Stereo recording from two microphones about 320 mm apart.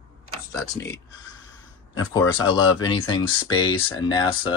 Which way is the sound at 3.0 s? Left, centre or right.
Centre.